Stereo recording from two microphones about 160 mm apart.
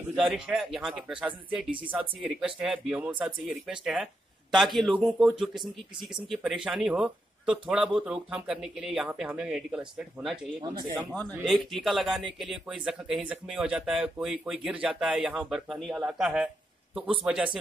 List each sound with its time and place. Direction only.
0.0 s a man's voice: 5° right (ahead or behind)
10.6 s speech: 30° right (ahead or behind)
11.4 s a man's voice: centre (ahead or behind)